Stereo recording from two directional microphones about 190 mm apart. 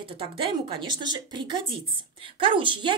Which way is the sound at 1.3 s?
25° right (ahead or behind).